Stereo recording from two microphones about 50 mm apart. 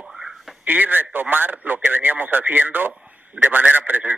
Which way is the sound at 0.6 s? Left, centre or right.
Right.